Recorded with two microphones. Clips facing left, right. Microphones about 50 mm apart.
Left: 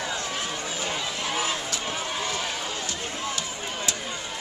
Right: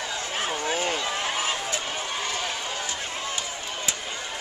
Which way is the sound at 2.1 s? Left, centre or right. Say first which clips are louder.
Even; centre.